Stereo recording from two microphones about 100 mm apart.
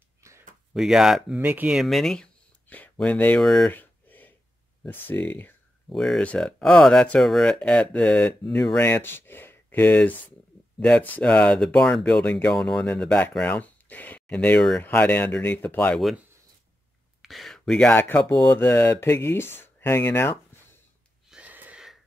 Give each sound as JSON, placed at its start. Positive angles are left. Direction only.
{"t": 0.2, "sound": "a sound", "side_deg": -30}
{"t": 0.7, "sound": "speech", "side_deg": -5}
{"t": 1.4, "sound": "speech", "side_deg": -15}
{"t": 1.8, "sound": "speech", "side_deg": 0}
{"t": 3.4, "sound": "speech", "side_deg": 5}
{"t": 3.7, "sound": "a sound", "side_deg": 20}
{"t": 4.8, "sound": "speech", "side_deg": 20}
{"t": 5.9, "sound": "speech", "side_deg": 5}
{"t": 8.8, "sound": "speech", "side_deg": 25}
{"t": 15.9, "sound": "speech", "side_deg": 0}
{"t": 17.2, "sound": "a sound", "side_deg": 0}
{"t": 17.8, "sound": "speech", "side_deg": 20}
{"t": 18.7, "sound": "speech", "side_deg": 35}
{"t": 21.3, "sound": "wheeze", "side_deg": -15}